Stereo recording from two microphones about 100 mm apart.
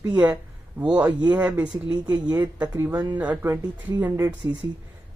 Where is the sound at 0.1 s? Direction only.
15° right (ahead or behind).